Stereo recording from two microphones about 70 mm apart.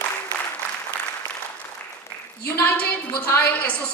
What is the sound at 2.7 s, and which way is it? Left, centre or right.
A woman's voice, centre.